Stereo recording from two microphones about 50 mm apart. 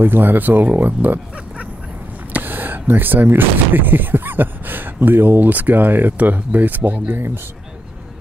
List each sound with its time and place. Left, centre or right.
0.0 s speech: right
2.3 s speech: right